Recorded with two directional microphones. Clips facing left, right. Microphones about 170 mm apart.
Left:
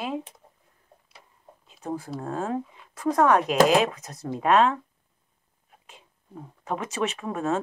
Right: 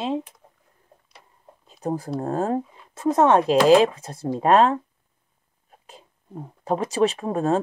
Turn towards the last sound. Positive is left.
turn(degrees=-35)  # may be behind; listen again after turning